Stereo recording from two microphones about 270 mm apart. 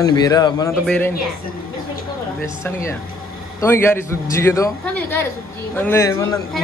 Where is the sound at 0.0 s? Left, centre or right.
Centre.